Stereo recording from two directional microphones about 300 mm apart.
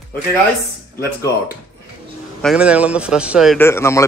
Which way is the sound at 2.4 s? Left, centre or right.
Centre.